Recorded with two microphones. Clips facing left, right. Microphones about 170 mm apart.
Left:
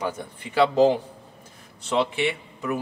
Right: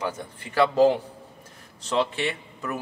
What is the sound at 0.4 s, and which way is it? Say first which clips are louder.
Speech: left 1 dB; 15° left (ahead or behind).